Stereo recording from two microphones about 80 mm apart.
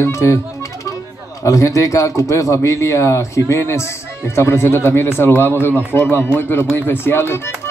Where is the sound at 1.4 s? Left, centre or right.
Left.